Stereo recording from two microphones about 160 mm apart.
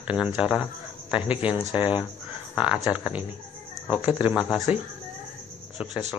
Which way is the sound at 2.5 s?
5° right (ahead or behind).